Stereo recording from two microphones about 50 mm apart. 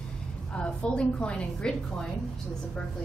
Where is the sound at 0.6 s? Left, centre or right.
Centre.